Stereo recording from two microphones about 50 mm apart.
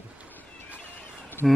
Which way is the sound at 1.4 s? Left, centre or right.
Centre.